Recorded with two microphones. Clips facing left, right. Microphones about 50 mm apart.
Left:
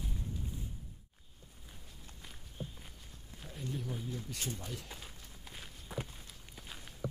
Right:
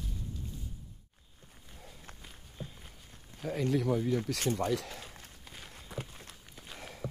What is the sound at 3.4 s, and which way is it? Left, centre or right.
Speech, right.